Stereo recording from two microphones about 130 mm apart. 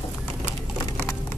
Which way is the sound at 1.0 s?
15° left (ahead or behind).